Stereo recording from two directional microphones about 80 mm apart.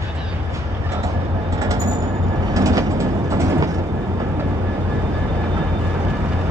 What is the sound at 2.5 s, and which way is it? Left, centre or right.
Train, right.